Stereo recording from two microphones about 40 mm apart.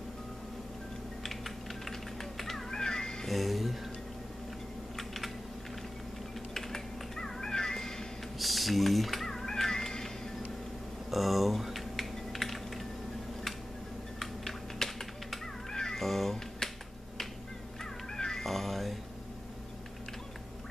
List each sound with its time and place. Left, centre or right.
1.2 s typing: centre
3.3 s music: centre
4.9 s typing: centre
6.5 s cat: centre
8.4 s music: centre
11.1 s typing: centre
14.2 s typing: centre
15.7 s cat: centre
16.0 s cat: centre
18.1 s cat: centre
18.4 s cat: centre